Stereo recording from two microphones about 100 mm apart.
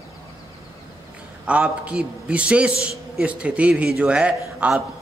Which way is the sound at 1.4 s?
10° right (ahead or behind).